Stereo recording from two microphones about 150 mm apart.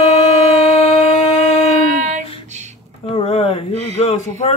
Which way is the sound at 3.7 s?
45° right (ahead or behind).